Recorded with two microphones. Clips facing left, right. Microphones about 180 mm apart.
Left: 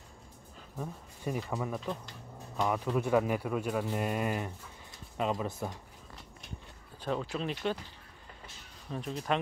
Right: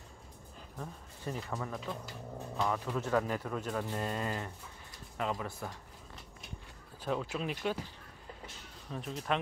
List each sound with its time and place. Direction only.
0.7 s speech: 10° left (ahead or behind)
7.0 s speech: 5° right (ahead or behind)
8.9 s speech: centre (ahead or behind)